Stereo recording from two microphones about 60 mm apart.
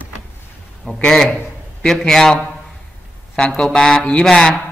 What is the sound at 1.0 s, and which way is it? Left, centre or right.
Speech, centre.